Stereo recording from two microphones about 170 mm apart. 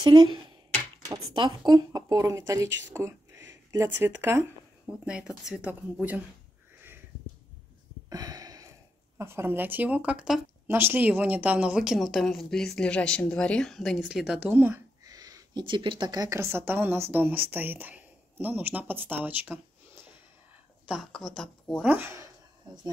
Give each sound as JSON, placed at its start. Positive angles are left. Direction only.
{"t": 0.0, "sound": "a woman's voice", "side_deg": -25}
{"t": 8.1, "sound": "a sound", "side_deg": -20}
{"t": 9.2, "sound": "a woman's voice", "side_deg": -15}
{"t": 20.9, "sound": "a woman's voice", "side_deg": 0}
{"t": 21.8, "sound": "a woman's voice", "side_deg": -15}